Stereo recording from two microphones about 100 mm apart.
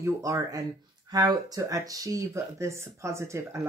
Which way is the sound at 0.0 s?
35° right (ahead or behind).